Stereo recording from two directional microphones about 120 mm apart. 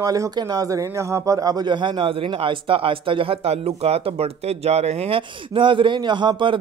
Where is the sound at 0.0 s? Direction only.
30° right (ahead or behind).